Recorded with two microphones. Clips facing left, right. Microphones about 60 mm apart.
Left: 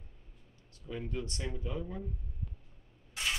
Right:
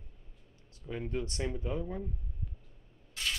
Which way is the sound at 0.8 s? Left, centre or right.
Right.